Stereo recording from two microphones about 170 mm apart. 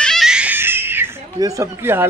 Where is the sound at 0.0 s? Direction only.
Centre (ahead or behind).